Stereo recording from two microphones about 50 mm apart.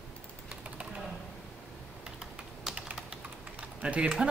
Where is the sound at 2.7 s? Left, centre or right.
Centre.